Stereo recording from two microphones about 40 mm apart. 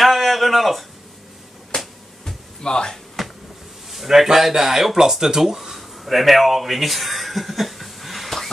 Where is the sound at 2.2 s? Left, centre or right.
Centre.